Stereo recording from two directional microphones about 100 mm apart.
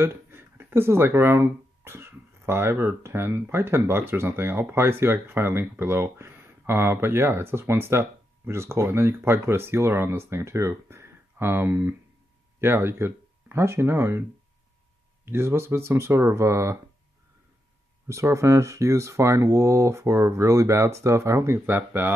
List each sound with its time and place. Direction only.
0.0 s speech: 25° right (ahead or behind)
15.2 s speech: 25° right (ahead or behind)
18.0 s speech: 30° right (ahead or behind)